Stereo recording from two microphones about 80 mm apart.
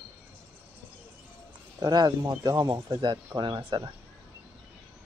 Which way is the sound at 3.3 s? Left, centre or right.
Right.